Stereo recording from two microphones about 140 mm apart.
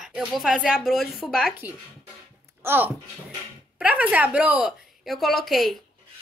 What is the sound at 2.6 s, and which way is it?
A woman's voice, 15° right (ahead or behind).